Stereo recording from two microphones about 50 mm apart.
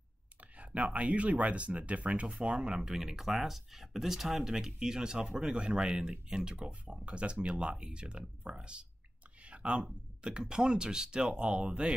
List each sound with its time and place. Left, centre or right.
0.4 s speech: right
9.4 s a sound: right
10.2 s speech: centre